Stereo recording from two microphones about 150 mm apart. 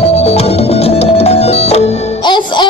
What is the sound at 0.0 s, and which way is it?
Music, 40° left (ahead or behind).